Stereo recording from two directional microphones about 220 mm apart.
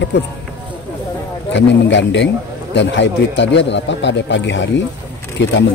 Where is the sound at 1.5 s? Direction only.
55° left (ahead or behind).